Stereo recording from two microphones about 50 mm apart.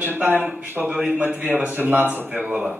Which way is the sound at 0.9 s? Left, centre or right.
Centre.